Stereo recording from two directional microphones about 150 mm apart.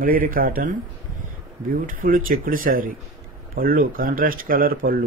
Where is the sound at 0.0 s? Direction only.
70° right (ahead or behind).